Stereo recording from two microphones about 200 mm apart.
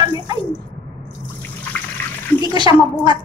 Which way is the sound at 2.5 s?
20° right (ahead or behind).